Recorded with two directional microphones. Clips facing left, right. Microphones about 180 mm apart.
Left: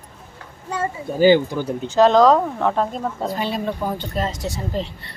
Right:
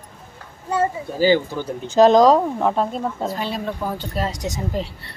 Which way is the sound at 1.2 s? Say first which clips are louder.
Left 3 dB; 20° left (ahead or behind).